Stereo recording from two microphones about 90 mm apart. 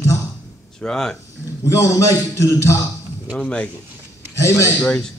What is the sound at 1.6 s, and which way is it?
A man's voice, 35° left (ahead or behind).